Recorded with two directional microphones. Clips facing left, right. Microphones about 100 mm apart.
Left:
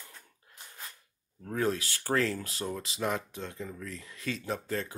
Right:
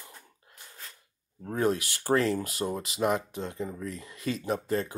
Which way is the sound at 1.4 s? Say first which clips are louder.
Right 3 dB; 20° right (ahead or behind).